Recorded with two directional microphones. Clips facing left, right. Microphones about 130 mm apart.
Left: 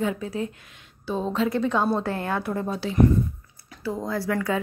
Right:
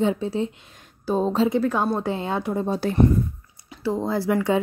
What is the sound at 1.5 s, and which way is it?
Speech, 5° right (ahead or behind).